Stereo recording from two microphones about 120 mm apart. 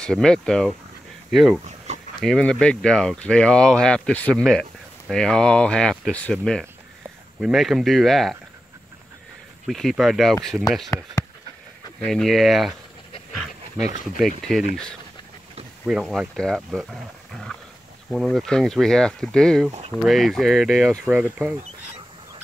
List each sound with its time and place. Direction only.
0.0 s speech: 5° left (ahead or behind)
9.7 s speech: centre (ahead or behind)
10.9 s speech: 25° left (ahead or behind)
12.1 s speech: centre (ahead or behind)
14.1 s speech: centre (ahead or behind)
15.9 s speech: 5° right (ahead or behind)